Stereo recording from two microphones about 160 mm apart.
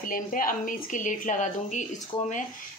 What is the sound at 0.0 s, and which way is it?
A woman's voice, 60° left (ahead or behind).